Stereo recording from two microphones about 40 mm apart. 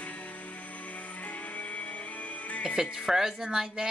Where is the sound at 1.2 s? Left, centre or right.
Left.